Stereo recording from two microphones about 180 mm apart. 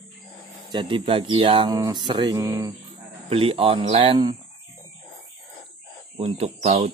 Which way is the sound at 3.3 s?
30° right (ahead or behind).